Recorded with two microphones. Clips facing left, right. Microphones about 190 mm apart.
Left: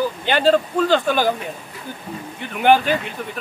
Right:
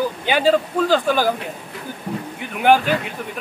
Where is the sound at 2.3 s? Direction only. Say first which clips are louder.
Even; centre (ahead or behind).